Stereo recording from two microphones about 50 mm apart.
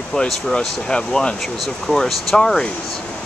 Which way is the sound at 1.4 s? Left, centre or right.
Centre.